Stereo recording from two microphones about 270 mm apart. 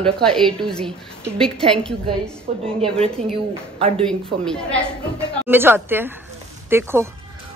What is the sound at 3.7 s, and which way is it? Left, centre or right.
Speech, right.